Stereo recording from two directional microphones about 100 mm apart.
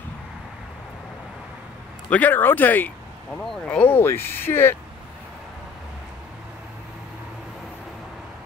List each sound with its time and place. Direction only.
2.0 s speech: 15° left (ahead or behind)
3.9 s speech: 25° left (ahead or behind)